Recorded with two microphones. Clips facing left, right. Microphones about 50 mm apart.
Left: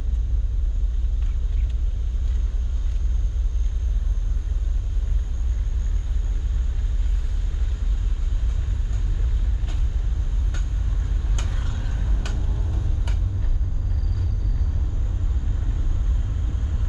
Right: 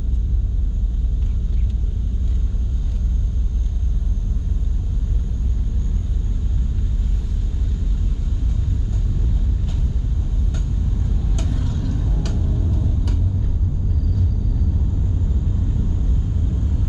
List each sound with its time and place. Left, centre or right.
11.3 s vehicle: left